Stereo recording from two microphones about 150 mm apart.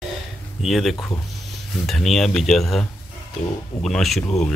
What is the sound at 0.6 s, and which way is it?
Speech, centre (ahead or behind).